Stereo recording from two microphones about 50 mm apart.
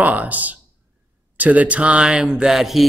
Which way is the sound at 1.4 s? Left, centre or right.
Right.